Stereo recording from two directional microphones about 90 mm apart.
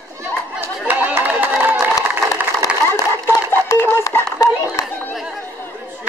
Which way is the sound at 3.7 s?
40° left (ahead or behind).